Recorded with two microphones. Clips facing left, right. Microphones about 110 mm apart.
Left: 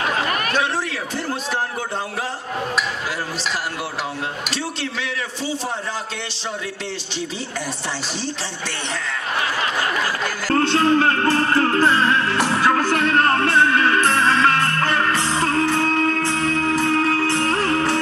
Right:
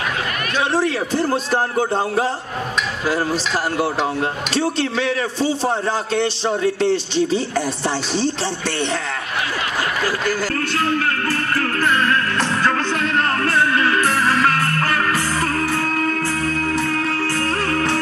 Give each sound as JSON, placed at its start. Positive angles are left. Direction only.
{"t": 0.7, "sound": "a man's voice", "side_deg": -35}
{"t": 4.6, "sound": "a man's voice", "side_deg": -35}
{"t": 10.5, "sound": "music", "side_deg": 30}
{"t": 12.4, "sound": "music", "side_deg": 15}
{"t": 13.2, "sound": "music", "side_deg": 30}